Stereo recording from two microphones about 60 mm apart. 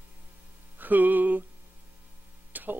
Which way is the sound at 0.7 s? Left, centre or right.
Right.